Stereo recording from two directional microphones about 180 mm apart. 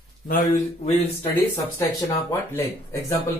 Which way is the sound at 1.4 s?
15° left (ahead or behind).